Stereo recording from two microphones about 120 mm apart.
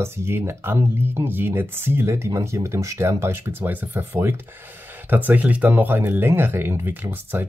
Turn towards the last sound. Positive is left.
turn(degrees=-20)  # may be behind; listen again after turning